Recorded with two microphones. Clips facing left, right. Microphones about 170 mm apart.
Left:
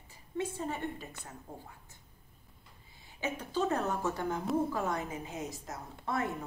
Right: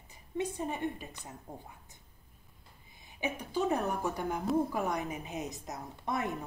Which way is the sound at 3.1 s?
15° right (ahead or behind).